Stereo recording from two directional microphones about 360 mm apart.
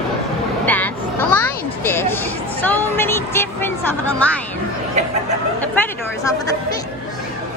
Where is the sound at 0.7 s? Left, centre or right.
Centre.